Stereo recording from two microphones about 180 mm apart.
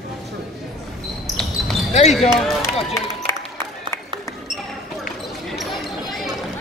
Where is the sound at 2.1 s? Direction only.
Centre (ahead or behind).